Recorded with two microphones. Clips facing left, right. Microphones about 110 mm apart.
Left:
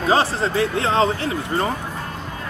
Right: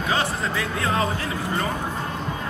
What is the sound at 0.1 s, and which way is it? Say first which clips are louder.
Speech: left 7 dB; 30° left (ahead or behind).